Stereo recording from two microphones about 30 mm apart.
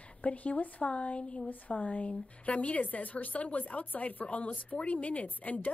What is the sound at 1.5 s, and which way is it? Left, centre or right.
A woman's voice, left.